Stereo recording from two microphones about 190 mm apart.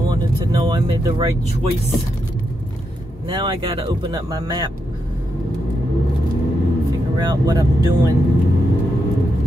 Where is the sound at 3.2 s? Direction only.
25° right (ahead or behind).